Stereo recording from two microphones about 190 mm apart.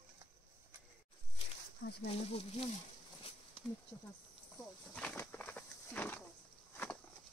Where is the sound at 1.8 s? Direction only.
60° left (ahead or behind).